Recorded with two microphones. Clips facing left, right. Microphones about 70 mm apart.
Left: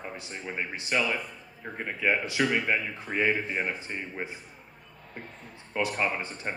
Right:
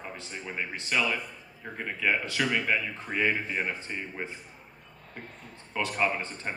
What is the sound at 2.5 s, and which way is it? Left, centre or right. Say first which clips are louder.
Speech: left 1 dB; left.